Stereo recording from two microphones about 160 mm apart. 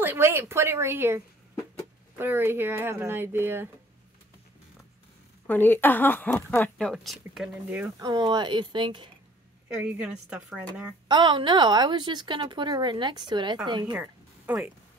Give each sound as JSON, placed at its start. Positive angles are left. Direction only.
{"t": 0.0, "sound": "speech", "side_deg": -15}
{"t": 5.5, "sound": "speech", "side_deg": 10}
{"t": 8.0, "sound": "a woman's voice", "side_deg": -30}
{"t": 9.8, "sound": "speech", "side_deg": -5}
{"t": 11.1, "sound": "a woman's voice", "side_deg": -30}
{"t": 13.9, "sound": "music", "side_deg": -10}